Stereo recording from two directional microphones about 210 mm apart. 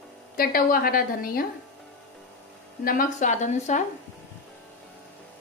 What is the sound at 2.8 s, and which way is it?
Speech, 40° left (ahead or behind).